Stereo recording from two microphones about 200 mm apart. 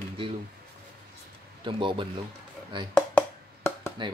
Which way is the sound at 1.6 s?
25° right (ahead or behind).